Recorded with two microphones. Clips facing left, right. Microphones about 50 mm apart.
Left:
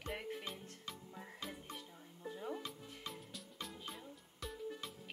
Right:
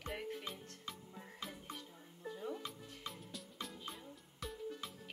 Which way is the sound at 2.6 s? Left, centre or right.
Centre.